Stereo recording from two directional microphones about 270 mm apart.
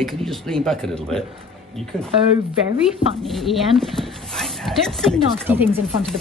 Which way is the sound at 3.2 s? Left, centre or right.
Centre.